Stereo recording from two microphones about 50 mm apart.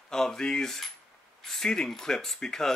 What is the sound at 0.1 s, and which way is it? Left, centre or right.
Speech, centre.